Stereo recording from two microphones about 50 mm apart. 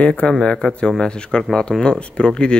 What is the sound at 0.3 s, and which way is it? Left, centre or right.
Speech, centre.